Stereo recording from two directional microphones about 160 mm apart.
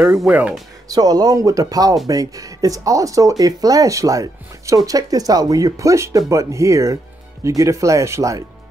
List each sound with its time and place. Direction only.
0.0 s speech: 5° right (ahead or behind)
0.8 s speech: 25° right (ahead or behind)